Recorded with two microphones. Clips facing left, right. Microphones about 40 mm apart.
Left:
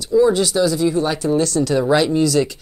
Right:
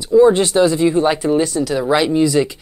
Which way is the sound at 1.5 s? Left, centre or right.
Centre.